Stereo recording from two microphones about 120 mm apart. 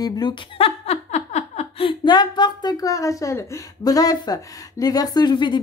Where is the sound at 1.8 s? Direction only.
40° left (ahead or behind).